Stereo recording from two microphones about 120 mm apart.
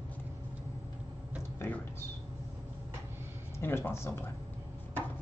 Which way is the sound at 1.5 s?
20° left (ahead or behind).